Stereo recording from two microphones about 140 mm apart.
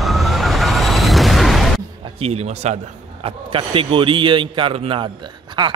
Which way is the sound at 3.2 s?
40° right (ahead or behind).